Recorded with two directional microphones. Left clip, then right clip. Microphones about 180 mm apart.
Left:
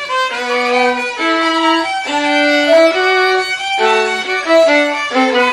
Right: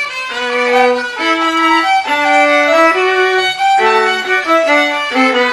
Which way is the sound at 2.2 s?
30° right (ahead or behind).